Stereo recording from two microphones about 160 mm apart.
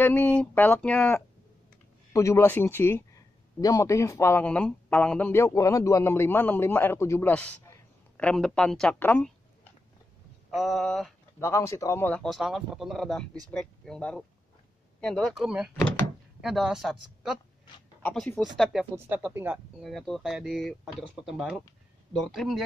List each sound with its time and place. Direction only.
0.0 s speech: 10° left (ahead or behind)
10.5 s speech: centre (ahead or behind)
11.3 s speech: 15° left (ahead or behind); by 17.4 s centre (ahead or behind)
18.6 s speech: centre (ahead or behind)
18.9 s speech: 15° right (ahead or behind)
19.8 s speech: centre (ahead or behind)